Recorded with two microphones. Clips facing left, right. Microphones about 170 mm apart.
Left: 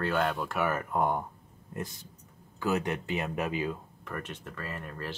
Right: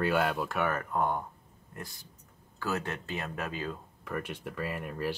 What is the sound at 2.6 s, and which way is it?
Speech, 15° left (ahead or behind).